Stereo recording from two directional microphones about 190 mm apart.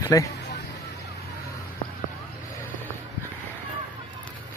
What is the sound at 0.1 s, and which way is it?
Speech, 20° left (ahead or behind).